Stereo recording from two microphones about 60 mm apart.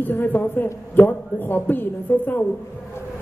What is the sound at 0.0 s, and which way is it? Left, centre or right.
A woman's voice, left.